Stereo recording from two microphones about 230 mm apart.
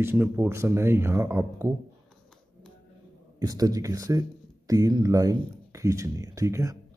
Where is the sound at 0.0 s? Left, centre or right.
Centre.